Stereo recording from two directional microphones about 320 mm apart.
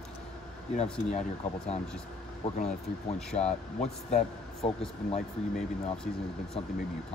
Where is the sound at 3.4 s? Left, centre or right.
Centre.